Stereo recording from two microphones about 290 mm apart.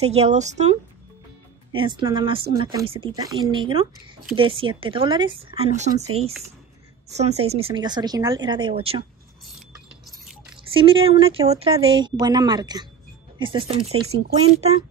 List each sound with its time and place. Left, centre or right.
0.0 s speech: right
7.2 s speech: right
10.7 s speech: centre